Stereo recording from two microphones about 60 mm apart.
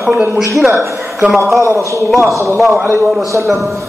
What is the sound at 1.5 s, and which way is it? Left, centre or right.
Speech, right.